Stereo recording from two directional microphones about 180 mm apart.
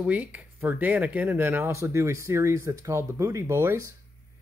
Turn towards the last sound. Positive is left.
turn(degrees=-15)  # may be behind; listen again after turning